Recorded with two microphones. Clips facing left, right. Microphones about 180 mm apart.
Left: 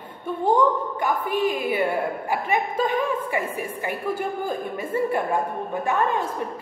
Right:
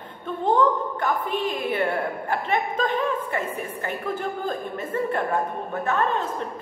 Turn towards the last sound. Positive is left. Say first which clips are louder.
# left 1 dB
turn(degrees=10)  # may be behind; listen again after turning